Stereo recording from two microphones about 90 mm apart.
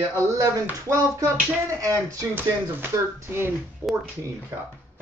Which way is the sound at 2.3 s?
25° right (ahead or behind).